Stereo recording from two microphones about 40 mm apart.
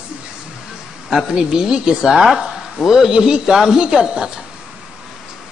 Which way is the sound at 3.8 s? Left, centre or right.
Centre.